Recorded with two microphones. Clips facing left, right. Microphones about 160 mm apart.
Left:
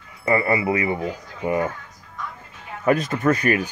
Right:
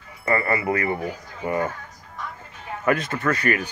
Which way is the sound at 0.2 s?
15° left (ahead or behind).